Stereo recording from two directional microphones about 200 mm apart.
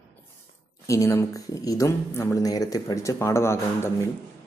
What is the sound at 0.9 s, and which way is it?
Speech, 15° left (ahead or behind).